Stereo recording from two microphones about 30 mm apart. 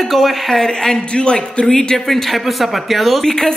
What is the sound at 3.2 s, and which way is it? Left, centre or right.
Speech, centre.